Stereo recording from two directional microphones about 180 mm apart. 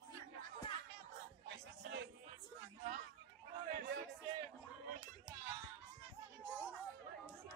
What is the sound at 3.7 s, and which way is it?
Music, 65° right (ahead or behind).